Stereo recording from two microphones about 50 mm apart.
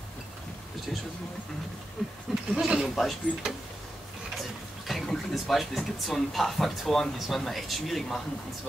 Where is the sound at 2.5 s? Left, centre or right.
Centre.